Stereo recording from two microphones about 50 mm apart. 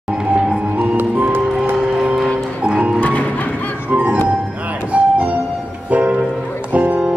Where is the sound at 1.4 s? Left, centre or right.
Centre.